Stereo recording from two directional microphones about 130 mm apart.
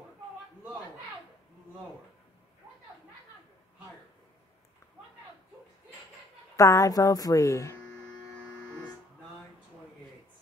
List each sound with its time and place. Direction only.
6.5 s speech: 25° left (ahead or behind)